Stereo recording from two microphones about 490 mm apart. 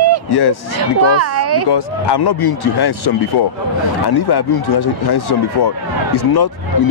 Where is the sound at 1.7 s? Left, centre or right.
Left.